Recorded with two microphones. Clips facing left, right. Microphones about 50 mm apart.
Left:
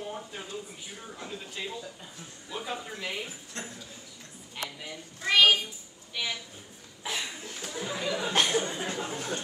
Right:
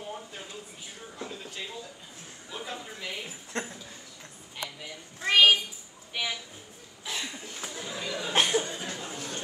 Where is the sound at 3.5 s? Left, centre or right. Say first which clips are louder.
Right 6 dB; right.